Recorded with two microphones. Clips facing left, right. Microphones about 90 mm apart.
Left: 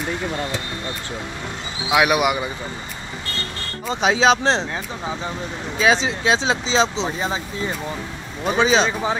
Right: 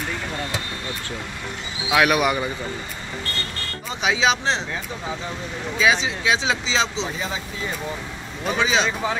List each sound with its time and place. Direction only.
1.9 s speech: 15° left (ahead or behind)
3.9 s speech: 35° left (ahead or behind)
5.8 s speech: 35° left (ahead or behind)
8.5 s speech: 30° left (ahead or behind)